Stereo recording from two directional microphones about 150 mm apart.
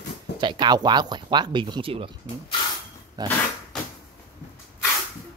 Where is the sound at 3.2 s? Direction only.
25° right (ahead or behind).